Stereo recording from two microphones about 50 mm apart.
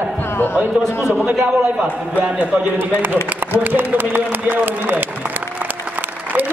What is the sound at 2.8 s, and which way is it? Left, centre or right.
A man's voice, right.